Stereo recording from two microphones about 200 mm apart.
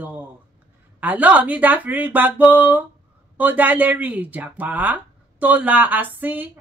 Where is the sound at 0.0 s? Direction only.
10° right (ahead or behind).